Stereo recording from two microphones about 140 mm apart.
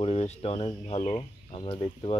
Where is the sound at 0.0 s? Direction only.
45° left (ahead or behind).